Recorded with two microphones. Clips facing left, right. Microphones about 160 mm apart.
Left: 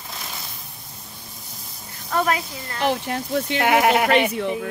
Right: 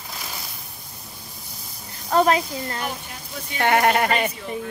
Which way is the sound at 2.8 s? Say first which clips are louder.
Left 9 dB; 75° left (ahead or behind).